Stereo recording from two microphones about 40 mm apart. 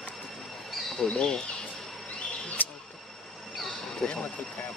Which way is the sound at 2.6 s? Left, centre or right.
Left.